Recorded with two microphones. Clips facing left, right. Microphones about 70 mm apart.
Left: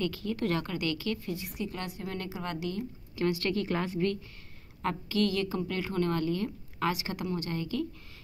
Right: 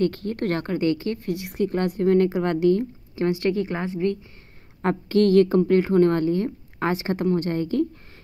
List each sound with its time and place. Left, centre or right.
0.0 s speech: right
0.7 s a woman's voice: right
1.2 s speech: right
3.2 s a woman's voice: right
4.8 s a woman's voice: right